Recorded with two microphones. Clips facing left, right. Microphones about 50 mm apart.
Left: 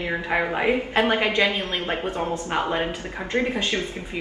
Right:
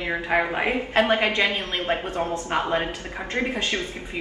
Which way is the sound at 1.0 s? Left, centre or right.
Right.